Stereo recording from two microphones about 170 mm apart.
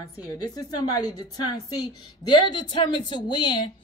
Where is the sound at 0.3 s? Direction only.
20° left (ahead or behind).